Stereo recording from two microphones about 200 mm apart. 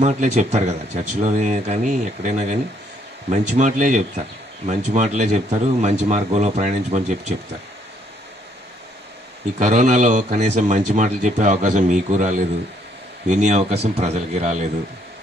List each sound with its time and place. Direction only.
0.0 s a man's voice: 35° right (ahead or behind)
9.6 s a man's voice: 35° right (ahead or behind)